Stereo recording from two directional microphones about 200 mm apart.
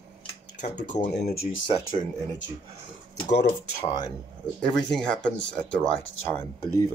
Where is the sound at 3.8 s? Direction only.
20° left (ahead or behind).